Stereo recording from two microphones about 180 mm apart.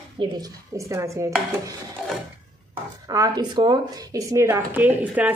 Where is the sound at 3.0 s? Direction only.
20° right (ahead or behind).